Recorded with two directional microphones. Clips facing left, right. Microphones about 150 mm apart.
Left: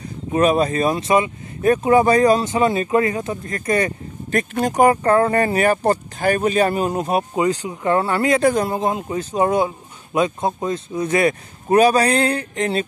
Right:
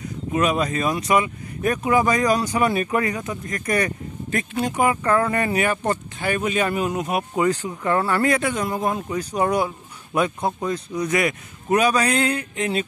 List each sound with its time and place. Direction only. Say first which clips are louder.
0.3 s speech: left 5 dB; 35° left (ahead or behind)
4.3 s speech: left 4 dB; 45° left (ahead or behind)
7.4 s speech: left 2 dB; 20° left (ahead or behind)
8.4 s speech: left 7 dB; 35° left (ahead or behind)
8.7 s speech: left 2 dB; 25° left (ahead or behind)